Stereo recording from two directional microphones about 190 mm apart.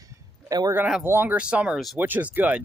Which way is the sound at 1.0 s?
10° right (ahead or behind).